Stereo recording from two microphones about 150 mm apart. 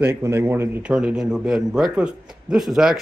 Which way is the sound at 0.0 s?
15° right (ahead or behind).